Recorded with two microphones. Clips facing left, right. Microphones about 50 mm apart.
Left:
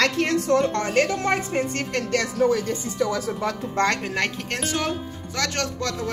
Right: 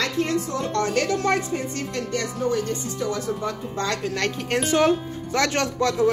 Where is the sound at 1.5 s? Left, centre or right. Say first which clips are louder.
Left 3 dB; left.